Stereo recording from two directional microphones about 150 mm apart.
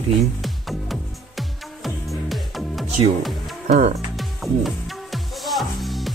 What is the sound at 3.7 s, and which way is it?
Speech, 50° right (ahead or behind).